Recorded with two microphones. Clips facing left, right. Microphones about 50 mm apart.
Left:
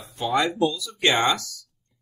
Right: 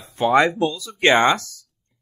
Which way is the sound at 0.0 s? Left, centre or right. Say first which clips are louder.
Right 8 dB; right.